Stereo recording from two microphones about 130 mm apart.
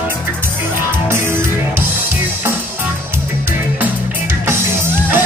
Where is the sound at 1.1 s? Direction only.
20° right (ahead or behind).